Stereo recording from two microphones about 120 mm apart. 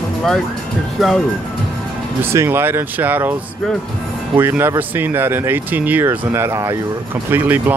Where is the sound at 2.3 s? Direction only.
20° right (ahead or behind).